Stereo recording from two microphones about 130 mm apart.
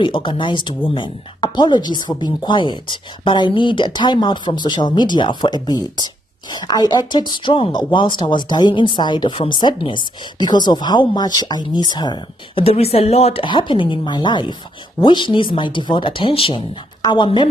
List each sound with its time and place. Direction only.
0.0 s speech: 40° left (ahead or behind)